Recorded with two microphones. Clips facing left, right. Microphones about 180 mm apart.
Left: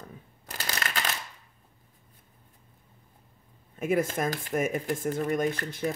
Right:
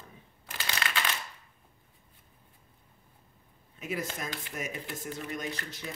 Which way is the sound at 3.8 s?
50° left (ahead or behind).